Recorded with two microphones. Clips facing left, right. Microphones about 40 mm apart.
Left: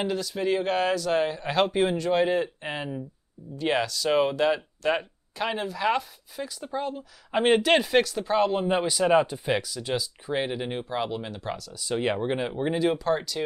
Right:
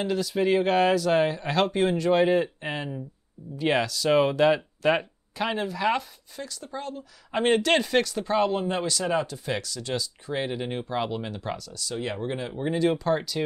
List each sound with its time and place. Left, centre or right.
0.0 s speech: centre
6.4 s speech: centre
8.6 s speech: centre
11.9 s speech: left
12.8 s speech: centre